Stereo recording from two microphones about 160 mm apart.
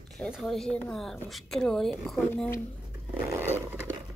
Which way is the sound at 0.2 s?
Centre (ahead or behind).